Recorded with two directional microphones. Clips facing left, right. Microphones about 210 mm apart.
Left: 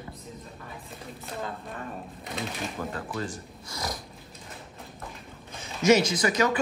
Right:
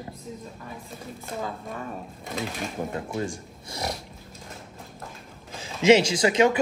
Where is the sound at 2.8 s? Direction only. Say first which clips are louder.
Right 5 dB; 20° right (ahead or behind).